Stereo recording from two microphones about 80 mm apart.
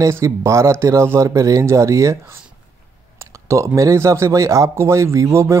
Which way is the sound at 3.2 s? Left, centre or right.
Right.